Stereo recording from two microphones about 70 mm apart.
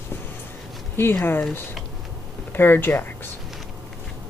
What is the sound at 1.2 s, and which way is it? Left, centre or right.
Speech, left.